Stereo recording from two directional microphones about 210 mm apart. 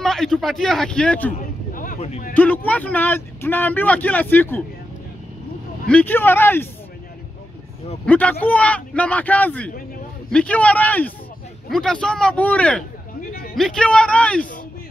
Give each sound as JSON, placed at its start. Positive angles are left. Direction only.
{"t": 0.0, "sound": "a man's voice", "side_deg": 0}
{"t": 1.7, "sound": "a sound", "side_deg": 40}
{"t": 2.3, "sound": "speech", "side_deg": 10}
{"t": 5.9, "sound": "speech", "side_deg": 10}
{"t": 8.0, "sound": "a man's voice", "side_deg": 5}